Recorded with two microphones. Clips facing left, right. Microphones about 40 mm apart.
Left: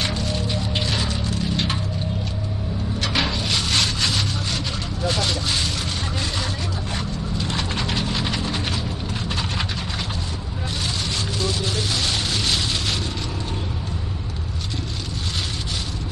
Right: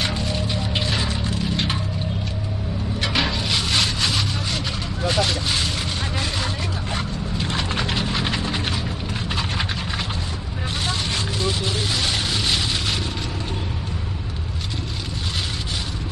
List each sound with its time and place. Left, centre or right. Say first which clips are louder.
0.0 s music: even; centre
3.0 s wood: right 1 dB; centre
5.0 s vehicle: right 2 dB; centre
7.3 s mechanisms: right 1 dB; right
7.7 s a sound: right 1 dB; centre
11.3 s vehicle: even; centre
11.9 s a sound: right 1 dB; centre